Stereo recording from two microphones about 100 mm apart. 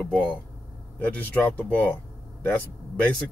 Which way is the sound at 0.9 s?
15° left (ahead or behind).